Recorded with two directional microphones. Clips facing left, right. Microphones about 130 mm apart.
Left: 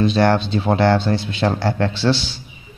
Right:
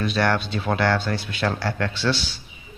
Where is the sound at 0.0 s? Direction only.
25° left (ahead or behind).